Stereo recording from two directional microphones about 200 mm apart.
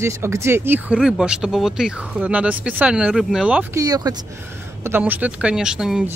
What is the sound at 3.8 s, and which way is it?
Speech, 20° right (ahead or behind).